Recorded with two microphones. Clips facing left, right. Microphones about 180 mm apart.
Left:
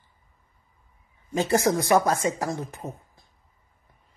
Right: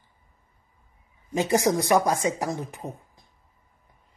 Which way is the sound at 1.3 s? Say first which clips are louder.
Even; 15° right (ahead or behind).